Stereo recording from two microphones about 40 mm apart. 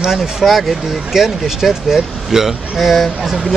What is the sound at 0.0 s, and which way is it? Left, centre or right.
Speech, centre.